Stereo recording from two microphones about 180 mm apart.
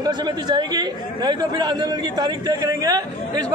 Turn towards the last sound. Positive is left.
turn(degrees=-20)  # may be behind; listen again after turning